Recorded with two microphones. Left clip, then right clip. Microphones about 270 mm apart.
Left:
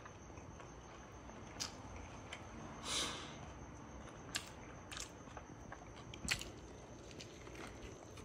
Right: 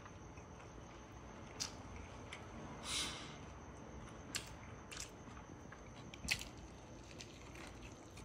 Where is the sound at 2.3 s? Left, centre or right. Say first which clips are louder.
Even; centre.